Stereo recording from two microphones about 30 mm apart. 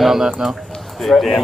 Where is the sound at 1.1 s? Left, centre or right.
Centre.